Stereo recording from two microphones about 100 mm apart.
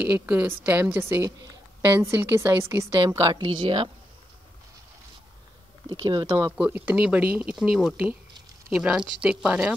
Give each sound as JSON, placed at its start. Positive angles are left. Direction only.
{"t": 0.0, "sound": "a woman's voice", "side_deg": -15}
{"t": 3.0, "sound": "a woman's voice", "side_deg": -35}
{"t": 3.4, "sound": "speech", "side_deg": -55}
{"t": 5.9, "sound": "speech", "side_deg": -45}
{"t": 6.2, "sound": "a woman's voice", "side_deg": -30}
{"t": 6.5, "sound": "speech", "side_deg": -15}